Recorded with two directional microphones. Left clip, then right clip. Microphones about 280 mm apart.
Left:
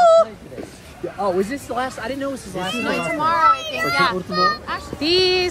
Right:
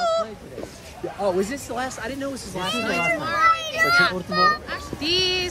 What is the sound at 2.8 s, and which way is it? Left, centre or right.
A child's voice, centre.